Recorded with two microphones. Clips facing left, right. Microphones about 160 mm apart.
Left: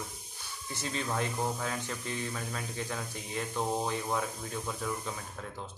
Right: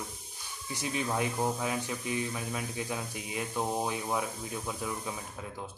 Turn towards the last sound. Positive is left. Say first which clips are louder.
# right 1 dB
turn(degrees=-10)  # may be behind; listen again after turning